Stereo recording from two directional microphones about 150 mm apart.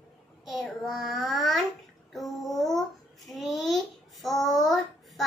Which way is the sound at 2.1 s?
Centre (ahead or behind).